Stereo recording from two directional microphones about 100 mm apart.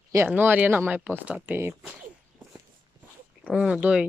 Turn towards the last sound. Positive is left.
turn(degrees=-10)  # may be behind; listen again after turning